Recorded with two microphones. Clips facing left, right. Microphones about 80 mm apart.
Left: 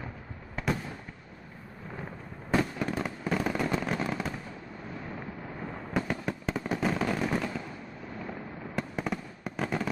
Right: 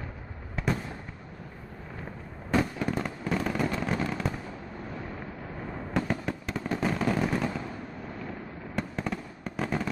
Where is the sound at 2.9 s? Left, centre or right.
Centre.